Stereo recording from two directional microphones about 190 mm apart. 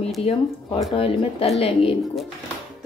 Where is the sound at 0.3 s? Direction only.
35° left (ahead or behind).